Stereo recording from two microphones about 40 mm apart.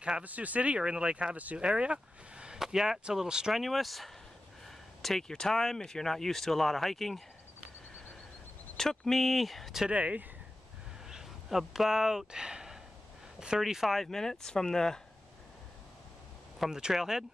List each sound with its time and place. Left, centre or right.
0.2 s speech: right
1.6 s speech: right
2.6 s speech: centre
3.5 s speech: centre
4.6 s a sound: centre
5.4 s speech: centre
8.7 s speech: centre
9.2 s speech: centre
9.8 s speech: right
11.1 s speech: centre
13.7 s speech: centre
14.1 s speech: centre
16.6 s speech: centre